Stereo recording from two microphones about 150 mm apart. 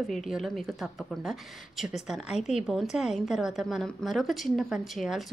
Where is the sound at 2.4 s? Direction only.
50° left (ahead or behind).